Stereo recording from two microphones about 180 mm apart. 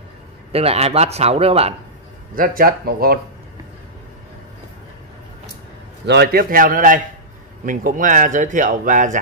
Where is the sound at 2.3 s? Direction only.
50° right (ahead or behind).